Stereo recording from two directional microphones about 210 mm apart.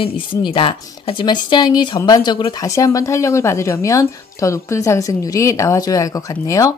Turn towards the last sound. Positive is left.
turn(degrees=15)  # may be behind; listen again after turning